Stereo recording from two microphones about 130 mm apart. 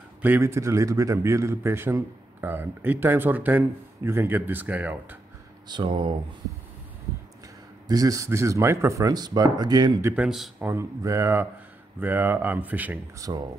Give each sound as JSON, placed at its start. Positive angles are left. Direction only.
{"t": 0.2, "sound": "a man's voice", "side_deg": -20}
{"t": 5.7, "sound": "speech", "side_deg": -40}
{"t": 7.9, "sound": "speech", "side_deg": -25}
{"t": 10.1, "sound": "speech", "side_deg": -5}
{"t": 10.6, "sound": "a man's voice", "side_deg": -20}
{"t": 13.2, "sound": "speech", "side_deg": -25}